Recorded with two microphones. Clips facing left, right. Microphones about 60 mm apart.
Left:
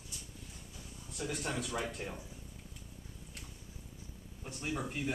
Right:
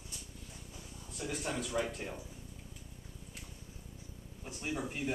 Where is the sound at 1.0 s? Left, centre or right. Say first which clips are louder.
Even; centre.